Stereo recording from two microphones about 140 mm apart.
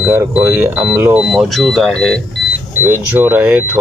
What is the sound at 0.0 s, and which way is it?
Speech, 15° right (ahead or behind).